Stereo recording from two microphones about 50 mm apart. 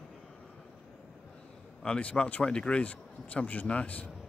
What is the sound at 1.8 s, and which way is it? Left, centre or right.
Speech, left.